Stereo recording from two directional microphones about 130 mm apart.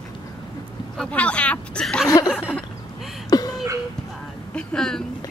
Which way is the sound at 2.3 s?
5° right (ahead or behind).